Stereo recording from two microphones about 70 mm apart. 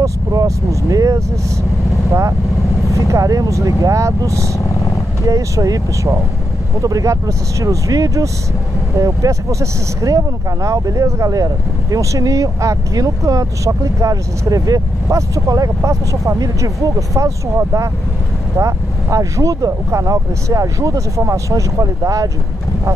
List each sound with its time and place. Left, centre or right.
0.0 s vehicle: right
2.9 s speech: right